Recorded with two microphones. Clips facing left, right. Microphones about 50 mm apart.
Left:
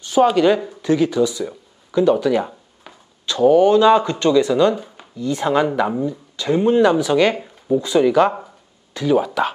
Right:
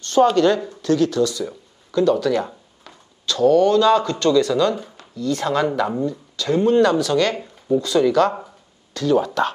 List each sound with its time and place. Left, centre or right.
0.0 s speech: centre
7.4 s a sound: centre
7.8 s speech: centre